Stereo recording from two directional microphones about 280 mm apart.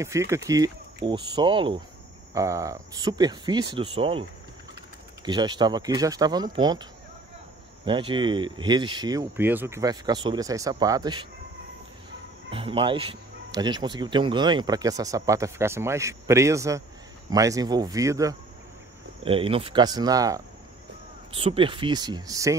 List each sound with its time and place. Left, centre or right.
0.3 s speech: centre
12.4 s speech: centre